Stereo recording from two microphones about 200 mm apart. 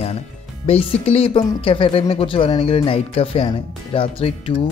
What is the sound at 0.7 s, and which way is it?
Speech, 30° left (ahead or behind).